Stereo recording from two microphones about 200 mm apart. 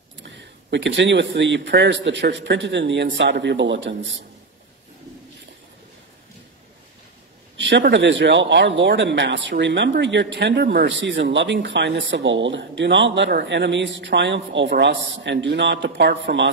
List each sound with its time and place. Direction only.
0.2 s speech: 60° right (ahead or behind)
7.5 s speech: 60° right (ahead or behind)